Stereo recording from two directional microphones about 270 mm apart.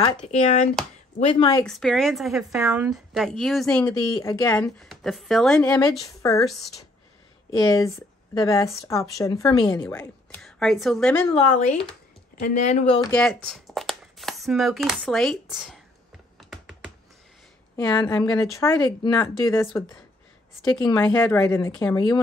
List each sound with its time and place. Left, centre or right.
0.2 s a woman's voice: left
1.7 s a woman's voice: centre
6.4 s a woman's voice: centre
7.5 s a woman's voice: centre
11.3 s speech: left
13.1 s speech: centre
16.3 s computer keyboard: centre
17.7 s a woman's voice: centre
20.8 s a woman's voice: centre